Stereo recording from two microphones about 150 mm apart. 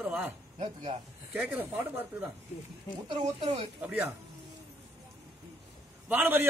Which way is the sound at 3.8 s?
10° right (ahead or behind).